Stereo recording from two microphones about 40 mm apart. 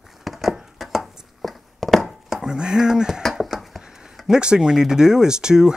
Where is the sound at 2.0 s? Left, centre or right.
Centre.